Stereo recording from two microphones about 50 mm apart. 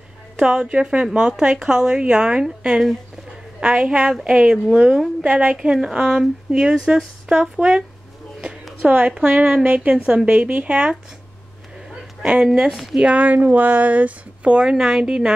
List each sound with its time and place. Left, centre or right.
0.4 s a woman's voice: centre
8.8 s speech: right
11.9 s a sound: centre
13.0 s speech: right